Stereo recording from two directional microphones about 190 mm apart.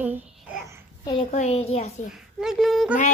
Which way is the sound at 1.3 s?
35° left (ahead or behind).